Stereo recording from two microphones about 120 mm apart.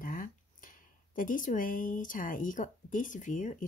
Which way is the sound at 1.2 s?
90° left.